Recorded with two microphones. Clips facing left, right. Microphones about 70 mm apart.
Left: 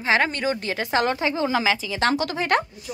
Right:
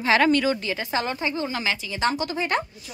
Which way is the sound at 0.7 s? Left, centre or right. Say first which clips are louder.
Left 4 dB; left.